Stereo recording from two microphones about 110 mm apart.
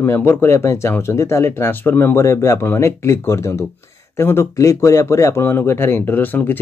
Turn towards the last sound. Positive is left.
turn(degrees=15)  # may be behind; listen again after turning